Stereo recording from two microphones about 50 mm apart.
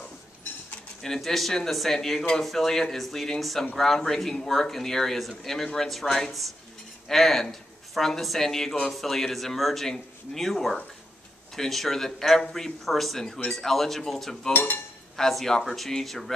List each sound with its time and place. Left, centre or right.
1.0 s speech: centre
14.5 s speech: left
15.1 s speech: centre